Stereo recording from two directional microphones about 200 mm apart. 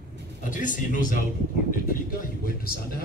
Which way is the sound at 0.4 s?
40° left (ahead or behind).